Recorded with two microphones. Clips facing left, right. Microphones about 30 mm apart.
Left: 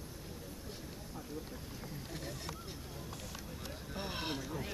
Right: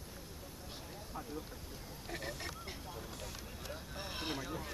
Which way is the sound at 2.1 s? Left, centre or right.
Right.